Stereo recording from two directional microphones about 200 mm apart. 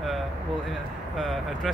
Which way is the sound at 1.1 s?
Centre (ahead or behind).